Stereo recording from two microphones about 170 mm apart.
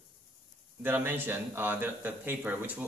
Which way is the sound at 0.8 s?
10° right (ahead or behind).